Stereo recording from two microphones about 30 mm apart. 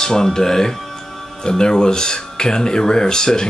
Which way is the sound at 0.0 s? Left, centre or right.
Centre.